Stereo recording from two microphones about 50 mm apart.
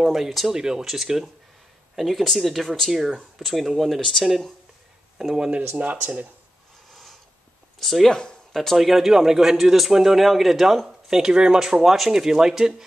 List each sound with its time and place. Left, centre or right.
0.0 s speech: centre
0.5 s speech: centre
5.8 s speech: right
6.9 s a sound: centre
7.8 s speech: centre
8.1 s speech: centre
8.5 s speech: centre